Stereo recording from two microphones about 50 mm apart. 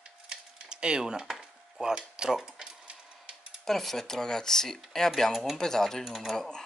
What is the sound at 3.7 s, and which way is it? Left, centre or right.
Speech, centre.